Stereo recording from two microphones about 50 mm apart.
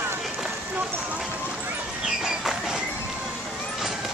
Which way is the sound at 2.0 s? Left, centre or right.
Centre.